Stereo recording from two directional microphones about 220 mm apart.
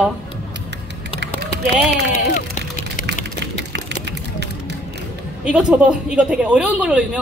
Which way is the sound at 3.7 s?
50° right (ahead or behind).